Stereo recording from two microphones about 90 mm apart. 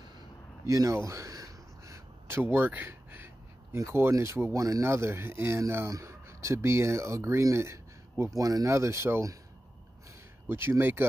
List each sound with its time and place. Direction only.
0.7 s a sound: 35° right (ahead or behind)
2.2 s speech: 25° right (ahead or behind)
10.5 s speech: 25° right (ahead or behind)